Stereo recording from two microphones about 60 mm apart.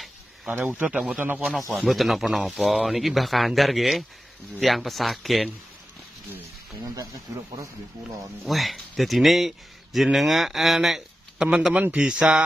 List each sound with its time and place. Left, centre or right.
0.5 s speech: right
0.8 s a man's voice: centre
1.7 s speech: centre
7.3 s speech: right
8.5 s speech: centre